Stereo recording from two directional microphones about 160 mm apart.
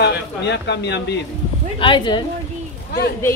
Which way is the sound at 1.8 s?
30° left (ahead or behind).